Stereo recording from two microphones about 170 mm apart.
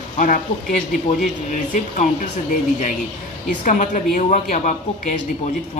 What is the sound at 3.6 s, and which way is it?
Speech, 50° left (ahead or behind).